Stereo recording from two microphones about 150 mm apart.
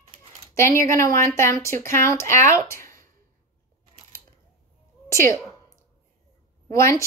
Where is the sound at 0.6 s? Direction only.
20° left (ahead or behind).